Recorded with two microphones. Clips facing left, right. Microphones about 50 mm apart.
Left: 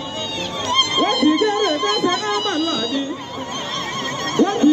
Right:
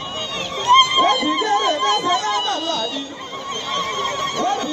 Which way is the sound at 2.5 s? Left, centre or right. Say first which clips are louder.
Left 1 dB; centre.